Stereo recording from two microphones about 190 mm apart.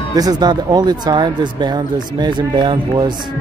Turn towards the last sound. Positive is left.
turn(degrees=-25)  # may be behind; listen again after turning